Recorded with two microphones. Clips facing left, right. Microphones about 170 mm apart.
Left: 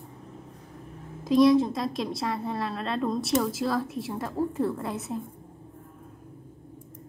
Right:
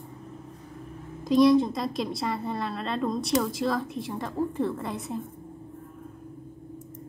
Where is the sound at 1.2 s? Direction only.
Centre (ahead or behind).